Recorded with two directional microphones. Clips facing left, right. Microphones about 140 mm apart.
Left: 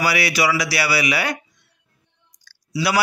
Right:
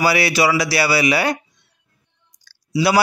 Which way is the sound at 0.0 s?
30° right (ahead or behind).